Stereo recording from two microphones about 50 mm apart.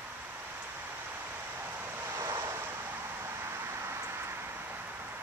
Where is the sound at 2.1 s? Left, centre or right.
Right.